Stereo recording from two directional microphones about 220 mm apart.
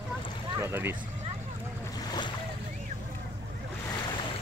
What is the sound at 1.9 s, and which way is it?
Boat, 20° left (ahead or behind).